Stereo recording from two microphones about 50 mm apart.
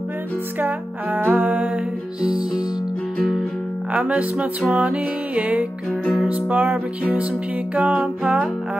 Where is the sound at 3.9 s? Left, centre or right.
Right.